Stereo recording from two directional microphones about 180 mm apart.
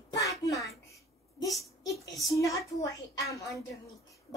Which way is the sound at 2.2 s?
15° left (ahead or behind).